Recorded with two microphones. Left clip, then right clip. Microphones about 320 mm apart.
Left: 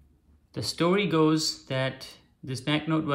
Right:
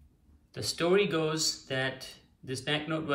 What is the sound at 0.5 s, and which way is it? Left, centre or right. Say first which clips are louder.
Speech: left 2 dB; centre.